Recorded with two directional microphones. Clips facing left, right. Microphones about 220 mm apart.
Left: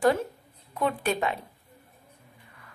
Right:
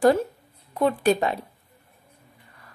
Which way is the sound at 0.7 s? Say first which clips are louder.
Right 6 dB; 35° right (ahead or behind).